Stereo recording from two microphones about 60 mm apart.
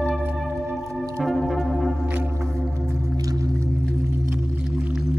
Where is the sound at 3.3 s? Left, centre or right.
Right.